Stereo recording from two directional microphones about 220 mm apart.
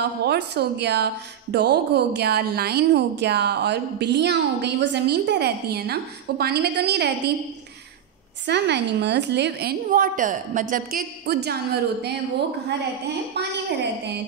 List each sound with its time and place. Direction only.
0.0 s speech: 50° right (ahead or behind)
8.5 s speech: 50° right (ahead or behind)